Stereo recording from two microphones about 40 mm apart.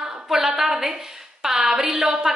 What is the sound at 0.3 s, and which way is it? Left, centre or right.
A woman's voice, centre.